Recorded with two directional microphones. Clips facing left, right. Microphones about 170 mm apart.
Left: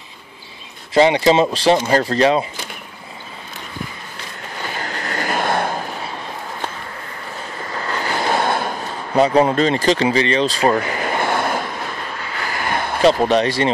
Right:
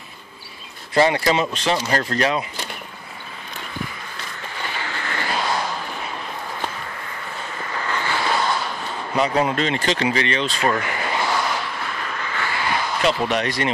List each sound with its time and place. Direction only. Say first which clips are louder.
0.9 s speech: left 5 dB; 20° left (ahead or behind)
4.7 s vehicle: left 4 dB; 40° left (ahead or behind)
7.7 s vehicle: left 2 dB; 35° left (ahead or behind); by 8.7 s 55° left (ahead or behind)
9.1 s speech: left 6 dB; 35° left (ahead or behind); by 11.6 s 55° left (ahead or behind)
12.4 s a sound: left 2 dB; 45° left (ahead or behind)
13.0 s speech: left 8 dB; 35° left (ahead or behind)